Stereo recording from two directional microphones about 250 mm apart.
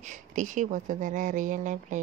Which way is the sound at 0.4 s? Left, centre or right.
Right.